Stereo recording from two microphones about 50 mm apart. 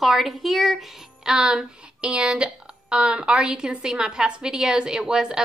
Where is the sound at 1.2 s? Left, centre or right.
Centre.